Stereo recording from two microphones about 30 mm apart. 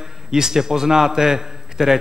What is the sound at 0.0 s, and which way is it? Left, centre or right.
A man's voice, centre.